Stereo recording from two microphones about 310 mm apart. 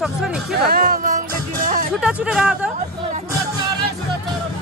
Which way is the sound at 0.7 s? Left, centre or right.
Right.